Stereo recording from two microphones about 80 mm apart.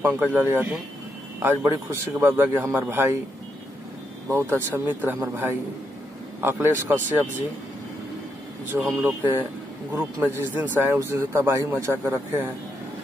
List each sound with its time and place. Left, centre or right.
0.0 s a man's voice: right
4.3 s a man's voice: right
8.9 s a man's voice: right